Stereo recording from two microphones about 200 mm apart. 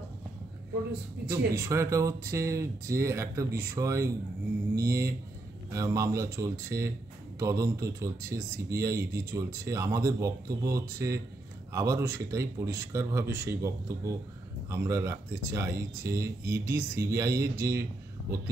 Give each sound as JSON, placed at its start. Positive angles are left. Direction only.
{"t": 1.3, "sound": "speech", "side_deg": -15}
{"t": 5.7, "sound": "speech", "side_deg": -15}